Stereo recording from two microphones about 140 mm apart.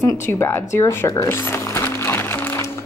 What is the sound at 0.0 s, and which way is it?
Zipper, 20° left (ahead or behind).